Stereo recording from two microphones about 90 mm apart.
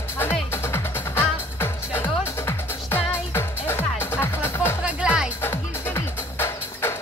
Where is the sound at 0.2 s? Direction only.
25° left (ahead or behind).